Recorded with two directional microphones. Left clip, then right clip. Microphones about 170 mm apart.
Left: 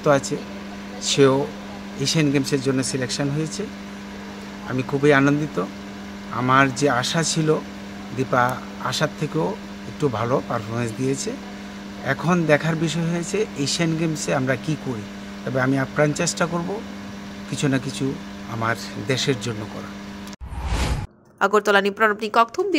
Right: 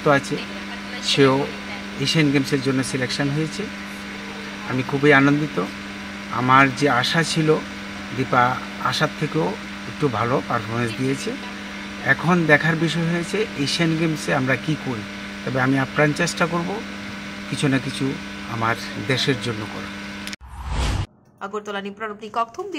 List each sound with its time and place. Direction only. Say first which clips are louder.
1.0 s speech: even; 25° left (ahead or behind)
5.0 s speech: right 2 dB; 30° left (ahead or behind)
12.1 s speech: right 3 dB; 30° left (ahead or behind)
21.4 s speech: left 12 dB; 40° left (ahead or behind)
22.3 s speech: left 7 dB; 25° left (ahead or behind)